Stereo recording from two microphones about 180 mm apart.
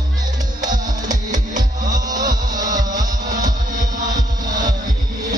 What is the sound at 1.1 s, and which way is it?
Music, 45° right (ahead or behind).